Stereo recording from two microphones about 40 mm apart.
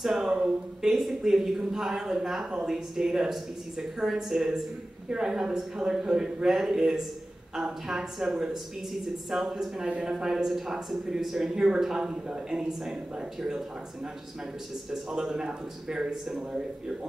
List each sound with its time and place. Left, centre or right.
0.0 s a sound: centre
0.3 s a woman's voice: centre
11.4 s a woman's voice: centre
14.9 s a woman's voice: centre